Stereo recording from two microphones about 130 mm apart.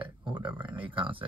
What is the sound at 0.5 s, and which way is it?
Speech, 15° right (ahead or behind).